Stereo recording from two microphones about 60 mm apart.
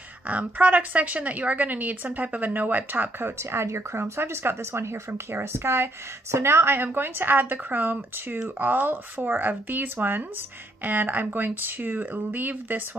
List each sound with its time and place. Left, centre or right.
0.3 s a woman's voice: right